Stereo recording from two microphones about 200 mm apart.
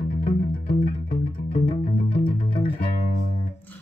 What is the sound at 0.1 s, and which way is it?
Music, 35° left (ahead or behind).